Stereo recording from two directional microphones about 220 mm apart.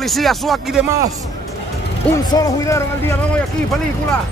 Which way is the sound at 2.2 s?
15° left (ahead or behind).